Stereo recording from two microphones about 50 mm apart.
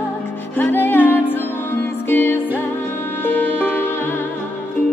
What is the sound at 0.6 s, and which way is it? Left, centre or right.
Music, left.